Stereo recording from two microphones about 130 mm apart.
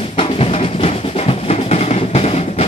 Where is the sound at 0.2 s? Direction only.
50° left (ahead or behind).